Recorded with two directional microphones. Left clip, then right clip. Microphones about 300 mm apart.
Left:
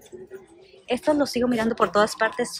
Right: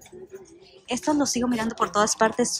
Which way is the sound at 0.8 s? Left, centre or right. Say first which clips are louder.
Left 2 dB; centre.